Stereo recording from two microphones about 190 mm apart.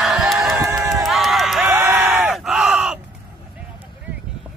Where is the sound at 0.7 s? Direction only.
15° right (ahead or behind).